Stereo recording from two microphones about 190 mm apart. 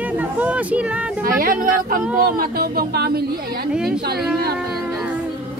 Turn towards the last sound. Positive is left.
turn(degrees=-5)  # may be behind; listen again after turning